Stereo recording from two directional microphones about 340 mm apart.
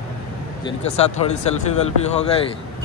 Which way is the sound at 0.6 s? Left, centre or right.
Centre.